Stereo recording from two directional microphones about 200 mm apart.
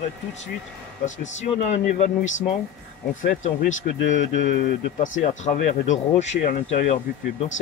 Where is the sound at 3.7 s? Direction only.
75° left (ahead or behind).